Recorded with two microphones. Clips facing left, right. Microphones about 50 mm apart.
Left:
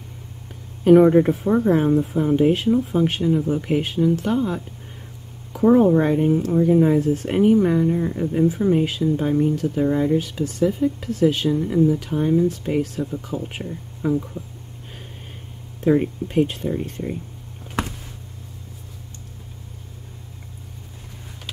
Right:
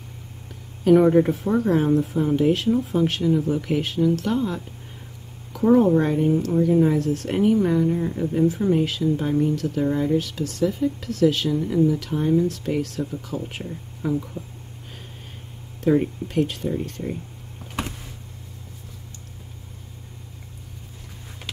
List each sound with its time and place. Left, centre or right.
0.8 s speech: centre
15.8 s speech: centre